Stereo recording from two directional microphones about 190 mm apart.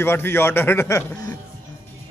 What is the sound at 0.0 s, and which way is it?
A man's voice, 10° left (ahead or behind).